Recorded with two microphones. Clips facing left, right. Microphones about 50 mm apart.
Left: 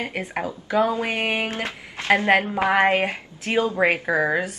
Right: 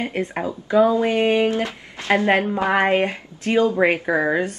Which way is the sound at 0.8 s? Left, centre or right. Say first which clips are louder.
Right 6 dB; left.